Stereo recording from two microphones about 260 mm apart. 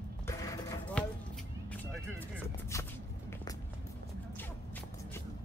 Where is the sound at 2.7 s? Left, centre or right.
Centre.